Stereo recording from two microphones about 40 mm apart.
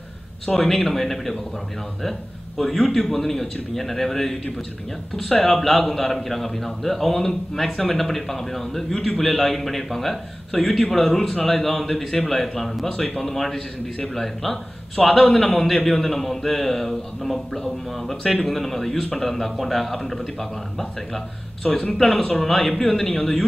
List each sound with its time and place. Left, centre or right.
0.5 s a man's voice: centre
21.6 s speech: left
21.9 s a man's voice: centre